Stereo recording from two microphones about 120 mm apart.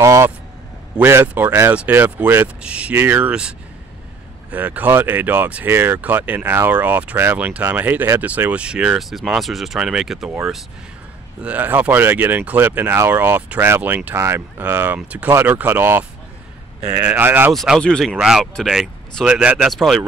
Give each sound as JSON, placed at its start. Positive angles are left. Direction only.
{"t": 0.0, "sound": "vehicle", "side_deg": -25}
{"t": 0.9, "sound": "speech", "side_deg": -20}
{"t": 11.4, "sound": "speech", "side_deg": -15}
{"t": 17.5, "sound": "speech", "side_deg": 0}